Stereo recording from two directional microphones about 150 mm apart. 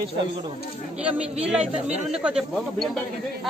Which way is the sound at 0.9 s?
5° right (ahead or behind).